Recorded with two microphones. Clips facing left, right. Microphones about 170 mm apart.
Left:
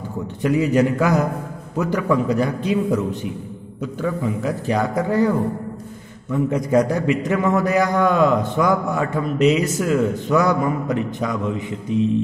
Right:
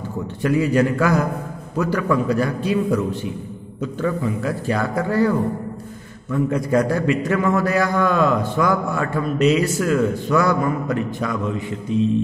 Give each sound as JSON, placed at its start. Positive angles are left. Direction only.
{"t": 0.4, "sound": "a man's voice", "side_deg": 20}
{"t": 6.3, "sound": "a man's voice", "side_deg": 20}